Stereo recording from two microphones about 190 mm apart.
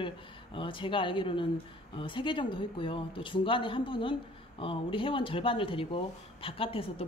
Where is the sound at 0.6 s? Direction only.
25° left (ahead or behind).